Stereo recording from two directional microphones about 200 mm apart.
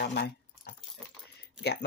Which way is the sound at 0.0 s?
55° left (ahead or behind).